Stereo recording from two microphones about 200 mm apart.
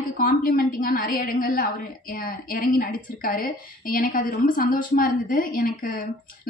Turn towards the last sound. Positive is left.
turn(degrees=45)  # may be behind; listen again after turning